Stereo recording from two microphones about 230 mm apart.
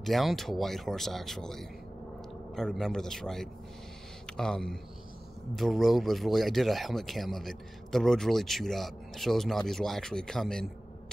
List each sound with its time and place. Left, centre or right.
0.0 s speech: centre